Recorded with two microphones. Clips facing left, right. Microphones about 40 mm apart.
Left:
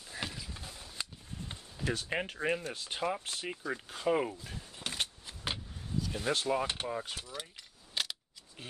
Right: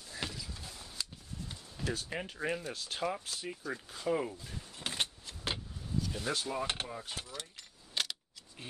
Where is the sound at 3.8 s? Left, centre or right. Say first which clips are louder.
Left 3 dB; left.